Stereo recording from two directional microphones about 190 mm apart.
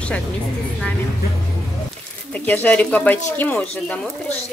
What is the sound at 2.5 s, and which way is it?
Speech, 10° left (ahead or behind).